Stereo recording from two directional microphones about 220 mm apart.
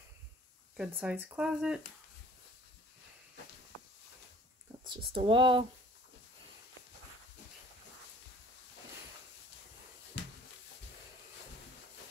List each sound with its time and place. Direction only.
0.7 s speech: 5° right (ahead or behind)
4.8 s speech: 25° right (ahead or behind)